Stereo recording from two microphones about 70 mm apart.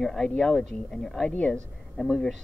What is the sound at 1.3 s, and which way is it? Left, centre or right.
Speech, centre.